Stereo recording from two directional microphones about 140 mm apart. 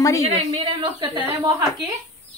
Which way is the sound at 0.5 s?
40° right (ahead or behind).